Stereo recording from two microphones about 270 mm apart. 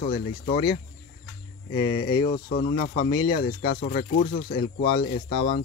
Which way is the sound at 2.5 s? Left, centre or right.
Left.